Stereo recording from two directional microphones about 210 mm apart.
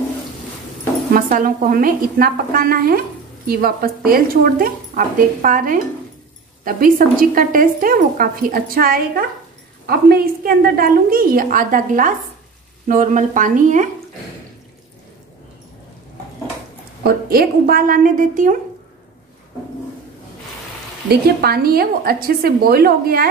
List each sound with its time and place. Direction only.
1.1 s a woman's voice: 40° right (ahead or behind)
17.0 s a woman's voice: 45° right (ahead or behind)
21.1 s a woman's voice: 45° right (ahead or behind)